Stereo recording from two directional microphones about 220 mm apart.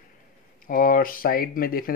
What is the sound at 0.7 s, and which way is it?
Speech, 40° left (ahead or behind).